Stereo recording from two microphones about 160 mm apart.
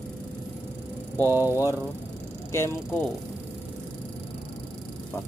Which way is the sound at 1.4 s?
20° left (ahead or behind).